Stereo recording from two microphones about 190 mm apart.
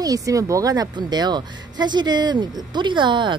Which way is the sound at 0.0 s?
20° right (ahead or behind).